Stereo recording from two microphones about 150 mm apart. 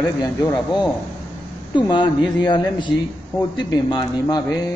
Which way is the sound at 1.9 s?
30° left (ahead or behind).